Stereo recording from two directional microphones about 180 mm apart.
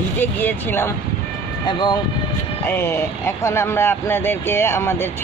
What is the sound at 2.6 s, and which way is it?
Speech, 10° left (ahead or behind).